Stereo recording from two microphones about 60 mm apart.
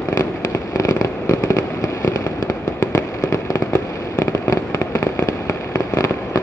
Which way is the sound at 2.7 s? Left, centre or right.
Left.